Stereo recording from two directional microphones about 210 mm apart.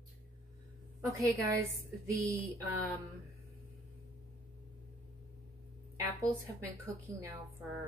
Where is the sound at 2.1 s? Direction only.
15° right (ahead or behind).